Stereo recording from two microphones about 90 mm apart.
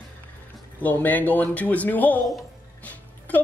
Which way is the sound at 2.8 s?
15° left (ahead or behind).